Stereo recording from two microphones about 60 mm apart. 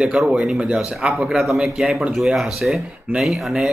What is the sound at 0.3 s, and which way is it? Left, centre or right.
A man's voice, centre.